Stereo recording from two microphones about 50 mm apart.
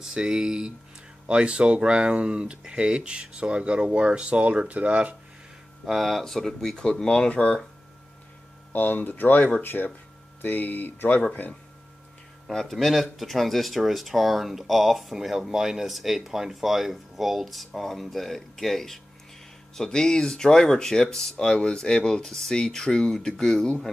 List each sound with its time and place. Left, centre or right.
0.0 s speech: centre
5.9 s speech: centre
8.7 s speech: left
12.7 s speech: centre